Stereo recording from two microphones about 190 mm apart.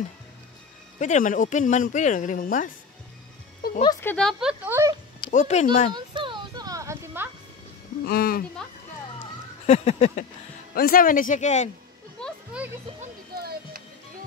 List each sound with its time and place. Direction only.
0.9 s speech: 40° left (ahead or behind)
3.6 s music: 55° left (ahead or behind)
4.0 s speech: 5° left (ahead or behind); by 4.9 s 10° right (ahead or behind)
5.3 s speech: 40° left (ahead or behind)
5.9 s a sound: 25° right (ahead or behind)
8.0 s speech: 50° left (ahead or behind)
9.2 s a sound: 35° left (ahead or behind)
10.7 s speech: 50° left (ahead or behind)
12.2 s music: 5° left (ahead or behind)
13.4 s music: 55° right (ahead or behind)